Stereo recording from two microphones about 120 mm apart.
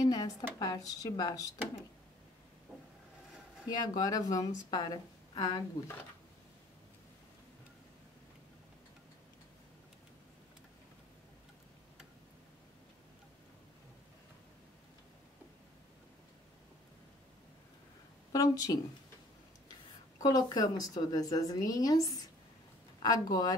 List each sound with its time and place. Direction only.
0.0 s a woman's voice: 35° left (ahead or behind)
3.6 s a woman's voice: 35° left (ahead or behind)
18.3 s speech: 30° left (ahead or behind)
20.2 s a woman's voice: 30° left (ahead or behind)